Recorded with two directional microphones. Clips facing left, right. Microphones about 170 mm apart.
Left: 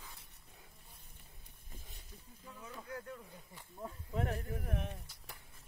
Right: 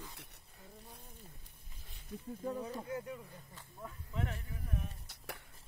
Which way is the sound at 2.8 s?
20° right (ahead or behind).